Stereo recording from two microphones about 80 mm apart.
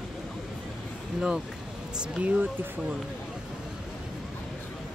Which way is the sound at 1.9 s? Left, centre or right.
Centre.